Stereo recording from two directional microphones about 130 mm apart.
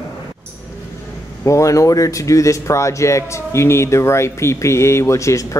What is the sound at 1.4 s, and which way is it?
Speech, 25° left (ahead or behind).